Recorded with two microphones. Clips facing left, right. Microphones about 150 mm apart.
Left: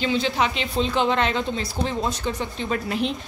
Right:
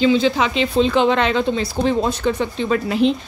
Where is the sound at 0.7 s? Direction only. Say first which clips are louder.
Right 6 dB; 90° right; by 2.5 s 65° right (ahead or behind).